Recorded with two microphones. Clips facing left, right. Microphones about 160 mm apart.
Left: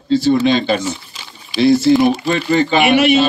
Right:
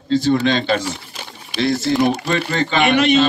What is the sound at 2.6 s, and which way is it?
Speech, 5° left (ahead or behind).